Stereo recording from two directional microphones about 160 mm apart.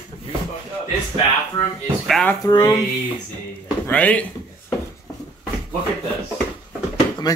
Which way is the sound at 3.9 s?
10° left (ahead or behind).